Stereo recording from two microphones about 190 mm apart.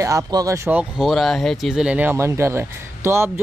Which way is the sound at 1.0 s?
Centre (ahead or behind).